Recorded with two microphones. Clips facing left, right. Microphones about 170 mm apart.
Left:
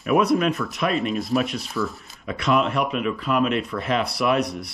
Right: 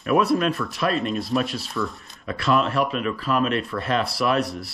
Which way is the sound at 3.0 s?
10° left (ahead or behind).